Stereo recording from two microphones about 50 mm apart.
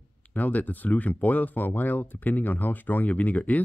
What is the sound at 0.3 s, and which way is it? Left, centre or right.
Speech, left.